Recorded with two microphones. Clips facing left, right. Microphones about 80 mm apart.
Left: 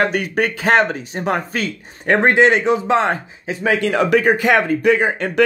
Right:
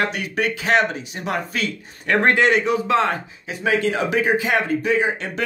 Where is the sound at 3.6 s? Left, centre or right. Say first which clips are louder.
Left 3 dB; left.